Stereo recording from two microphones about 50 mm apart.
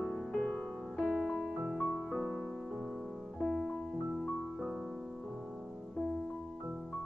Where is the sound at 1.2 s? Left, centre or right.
Centre.